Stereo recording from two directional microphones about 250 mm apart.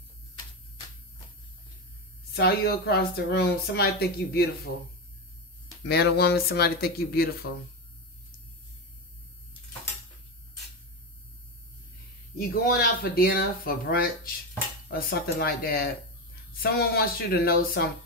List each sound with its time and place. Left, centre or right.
2.3 s speech: left
5.9 s speech: left
12.4 s speech: left